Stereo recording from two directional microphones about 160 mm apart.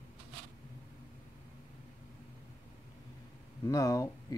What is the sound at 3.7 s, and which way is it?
Speech, 20° left (ahead or behind).